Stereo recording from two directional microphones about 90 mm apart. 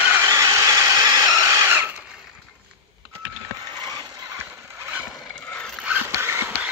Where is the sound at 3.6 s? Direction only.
50° right (ahead or behind).